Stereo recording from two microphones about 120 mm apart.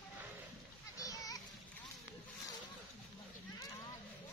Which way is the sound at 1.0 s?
30° left (ahead or behind).